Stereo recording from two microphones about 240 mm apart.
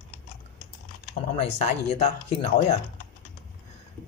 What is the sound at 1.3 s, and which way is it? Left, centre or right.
Speech, left.